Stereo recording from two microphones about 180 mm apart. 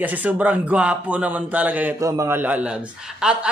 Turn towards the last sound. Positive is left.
turn(degrees=-5)  # may be behind; listen again after turning